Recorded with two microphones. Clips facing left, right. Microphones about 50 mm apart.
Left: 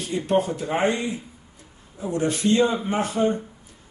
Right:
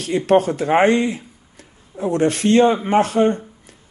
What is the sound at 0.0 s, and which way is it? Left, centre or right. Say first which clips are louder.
Speech: right 7 dB; right.